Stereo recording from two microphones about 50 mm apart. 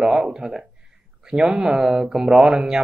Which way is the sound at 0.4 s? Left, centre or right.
Centre.